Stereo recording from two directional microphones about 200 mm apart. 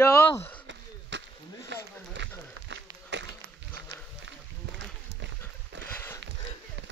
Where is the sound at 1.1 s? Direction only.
65° right (ahead or behind).